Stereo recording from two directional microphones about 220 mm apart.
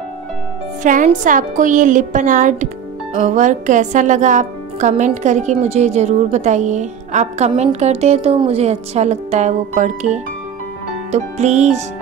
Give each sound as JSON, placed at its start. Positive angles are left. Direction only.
{"t": 0.8, "sound": "speech", "side_deg": -35}